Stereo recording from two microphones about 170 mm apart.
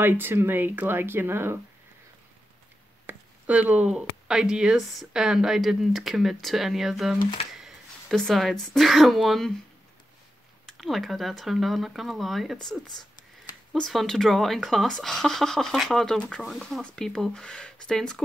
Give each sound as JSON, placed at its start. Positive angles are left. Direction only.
{"t": 0.0, "sound": "speech", "side_deg": -10}
{"t": 3.1, "sound": "speech", "side_deg": -10}
{"t": 10.7, "sound": "speech", "side_deg": 0}
{"t": 13.7, "sound": "speech", "side_deg": 0}